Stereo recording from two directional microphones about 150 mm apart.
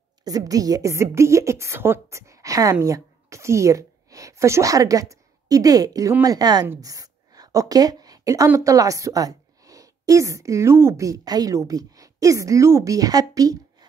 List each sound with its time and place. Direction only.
0.2 s a woman's voice: 25° right (ahead or behind)